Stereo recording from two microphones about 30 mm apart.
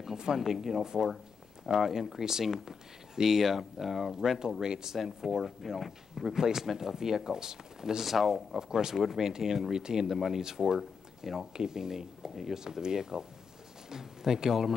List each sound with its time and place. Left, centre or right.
0.4 s speech: centre
4.9 s speech: centre
6.3 s speech: centre
8.1 s speech: centre
8.5 s speech: centre
8.9 s speech: centre
9.2 s speech: centre
10.0 s speech: centre